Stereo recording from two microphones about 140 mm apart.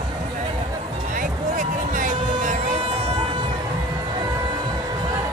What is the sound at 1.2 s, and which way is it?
Music, 70° right (ahead or behind).